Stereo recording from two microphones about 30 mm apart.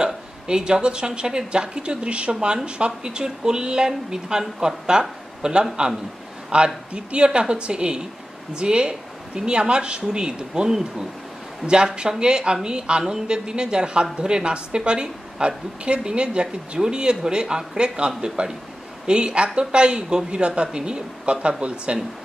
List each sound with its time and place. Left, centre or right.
0.0 s speech: right